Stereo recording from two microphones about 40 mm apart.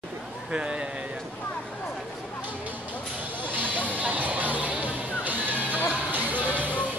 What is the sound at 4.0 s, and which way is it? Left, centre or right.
Music, right.